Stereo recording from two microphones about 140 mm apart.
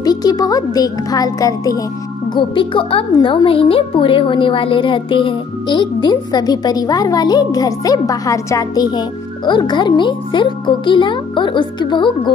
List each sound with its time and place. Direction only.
0.0 s a child's voice: 30° left (ahead or behind)
2.3 s speech: 35° left (ahead or behind)